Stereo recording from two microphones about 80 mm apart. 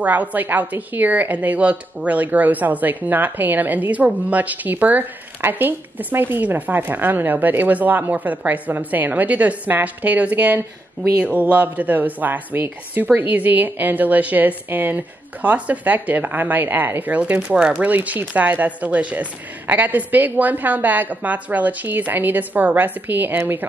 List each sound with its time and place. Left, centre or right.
0.0 s a woman's voice: right